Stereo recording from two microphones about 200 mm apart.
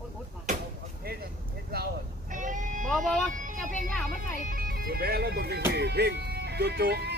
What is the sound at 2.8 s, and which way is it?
Vehicle, centre (ahead or behind).